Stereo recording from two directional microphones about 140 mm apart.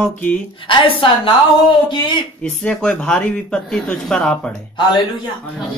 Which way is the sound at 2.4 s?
5° left (ahead or behind).